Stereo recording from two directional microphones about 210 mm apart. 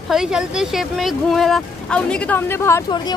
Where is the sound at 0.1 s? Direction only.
5° right (ahead or behind).